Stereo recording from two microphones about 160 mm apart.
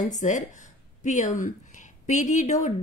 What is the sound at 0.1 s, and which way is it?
A woman's voice, 50° left (ahead or behind).